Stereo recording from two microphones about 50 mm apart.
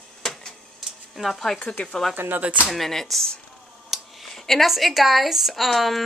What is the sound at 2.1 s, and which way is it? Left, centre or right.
Speech, right.